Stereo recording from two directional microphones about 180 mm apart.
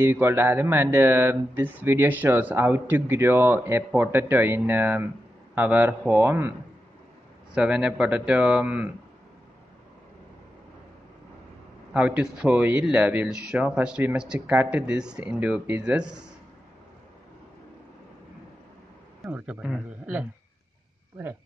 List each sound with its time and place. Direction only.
0.0 s speech: 15° right (ahead or behind)
7.5 s speech: 5° right (ahead or behind)
11.9 s speech: 5° right (ahead or behind)
19.2 s speech: 5° right (ahead or behind)